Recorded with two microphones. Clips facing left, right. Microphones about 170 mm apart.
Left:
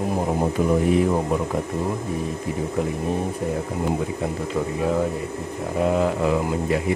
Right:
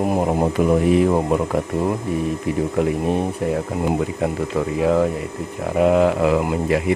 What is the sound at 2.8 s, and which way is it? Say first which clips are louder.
Speech: right 5 dB; 75° right (ahead or behind).